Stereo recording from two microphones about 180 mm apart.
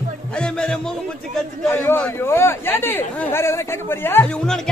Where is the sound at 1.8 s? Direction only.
15° left (ahead or behind).